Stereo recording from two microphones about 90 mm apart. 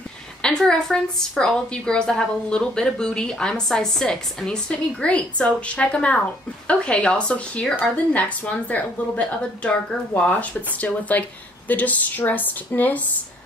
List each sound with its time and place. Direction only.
0.4 s a woman's voice: 10° left (ahead or behind)